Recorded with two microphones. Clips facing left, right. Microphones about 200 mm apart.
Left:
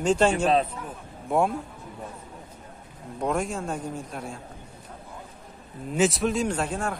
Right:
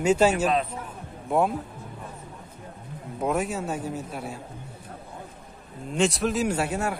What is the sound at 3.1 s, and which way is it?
A man's voice, 5° right (ahead or behind).